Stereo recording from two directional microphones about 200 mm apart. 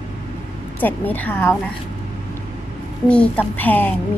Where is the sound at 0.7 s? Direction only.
10° left (ahead or behind).